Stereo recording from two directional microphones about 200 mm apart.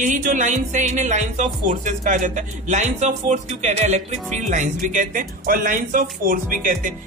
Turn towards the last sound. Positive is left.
turn(degrees=-45)  # may be behind; listen again after turning